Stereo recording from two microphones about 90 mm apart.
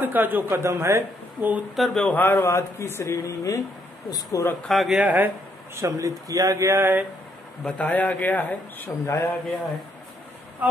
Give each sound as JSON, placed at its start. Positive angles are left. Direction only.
{"t": 0.0, "sound": "speech", "side_deg": -20}
{"t": 2.0, "sound": "a man's voice", "side_deg": 20}
{"t": 2.4, "sound": "speech", "side_deg": 35}
{"t": 4.6, "sound": "speech", "side_deg": 0}
{"t": 4.9, "sound": "speech", "side_deg": -20}
{"t": 5.8, "sound": "speech", "side_deg": -35}
{"t": 7.6, "sound": "a man's voice", "side_deg": 15}